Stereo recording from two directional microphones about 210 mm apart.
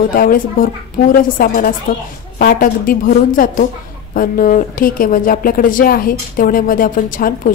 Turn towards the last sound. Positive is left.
turn(degrees=40)  # may be behind; listen again after turning